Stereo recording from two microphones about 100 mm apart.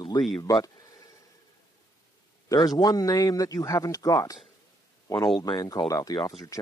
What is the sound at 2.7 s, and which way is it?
Speech, 40° left (ahead or behind).